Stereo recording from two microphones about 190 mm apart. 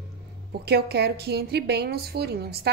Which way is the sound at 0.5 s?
55° right (ahead or behind).